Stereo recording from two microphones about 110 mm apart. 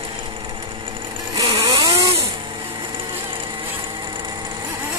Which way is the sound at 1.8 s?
35° right (ahead or behind).